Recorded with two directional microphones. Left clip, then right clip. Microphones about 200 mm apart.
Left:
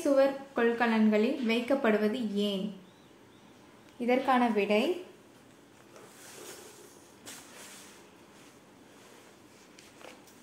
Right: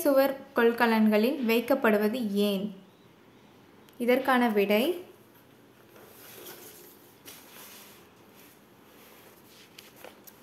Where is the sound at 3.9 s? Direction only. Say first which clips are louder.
Right 2 dB; 25° right (ahead or behind).